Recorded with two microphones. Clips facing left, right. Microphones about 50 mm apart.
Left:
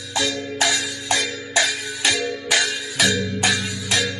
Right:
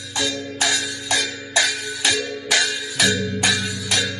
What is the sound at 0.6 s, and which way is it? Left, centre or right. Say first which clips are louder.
Music: left 1 dB; left.